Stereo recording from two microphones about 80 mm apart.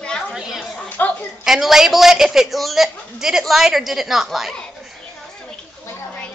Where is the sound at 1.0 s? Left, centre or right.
Left.